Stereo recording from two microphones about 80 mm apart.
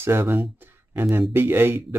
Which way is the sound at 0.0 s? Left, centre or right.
Right.